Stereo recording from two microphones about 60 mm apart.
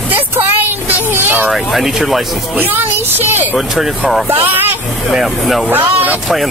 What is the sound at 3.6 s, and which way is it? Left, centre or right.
Speech, centre.